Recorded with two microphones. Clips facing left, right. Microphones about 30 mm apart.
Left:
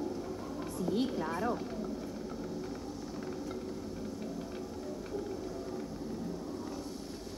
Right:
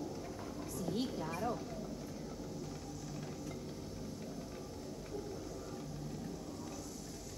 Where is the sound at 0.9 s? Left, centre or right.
Left.